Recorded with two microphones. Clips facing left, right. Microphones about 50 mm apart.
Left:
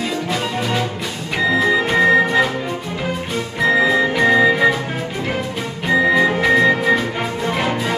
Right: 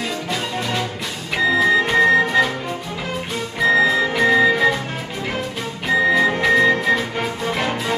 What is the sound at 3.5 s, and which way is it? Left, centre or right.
Music, centre.